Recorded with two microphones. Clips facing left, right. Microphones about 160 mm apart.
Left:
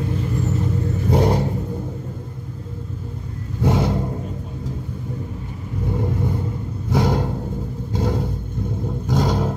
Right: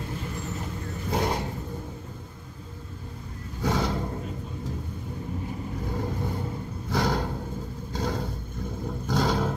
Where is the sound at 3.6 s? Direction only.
20° left (ahead or behind).